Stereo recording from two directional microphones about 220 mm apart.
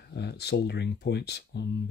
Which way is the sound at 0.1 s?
50° left (ahead or behind).